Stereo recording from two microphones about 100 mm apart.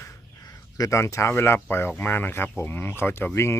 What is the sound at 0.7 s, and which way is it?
Speech, 30° left (ahead or behind).